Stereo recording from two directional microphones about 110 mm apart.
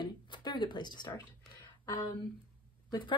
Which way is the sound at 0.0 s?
40° left (ahead or behind).